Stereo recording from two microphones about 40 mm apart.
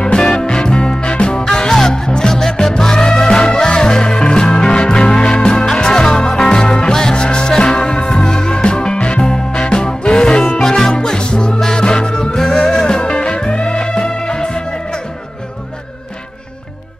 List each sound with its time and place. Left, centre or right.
0.0 s music: centre
10.6 s music: centre